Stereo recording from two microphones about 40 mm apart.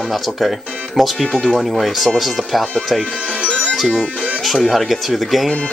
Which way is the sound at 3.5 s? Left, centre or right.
Left.